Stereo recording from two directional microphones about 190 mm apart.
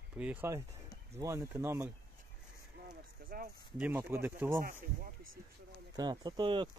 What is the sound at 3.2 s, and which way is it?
Speech, 55° right (ahead or behind).